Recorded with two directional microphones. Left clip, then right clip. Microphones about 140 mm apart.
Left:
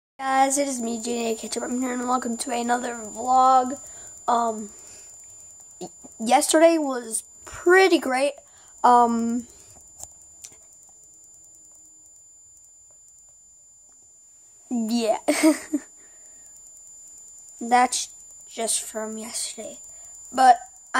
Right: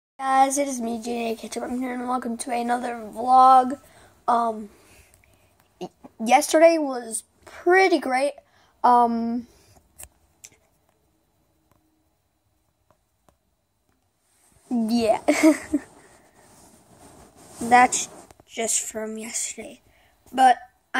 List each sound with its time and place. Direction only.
0.2 s a woman's voice: 20° left (ahead or behind)
3.1 s speech: 5° left (ahead or behind)
3.9 s a sound: 30° left (ahead or behind)
6.2 s a woman's voice: 15° left (ahead or behind)
14.9 s speech: centre (ahead or behind)
15.2 s a woman's voice: 25° left (ahead or behind)
17.6 s speech: 10° left (ahead or behind)
20.3 s a sound: 10° left (ahead or behind)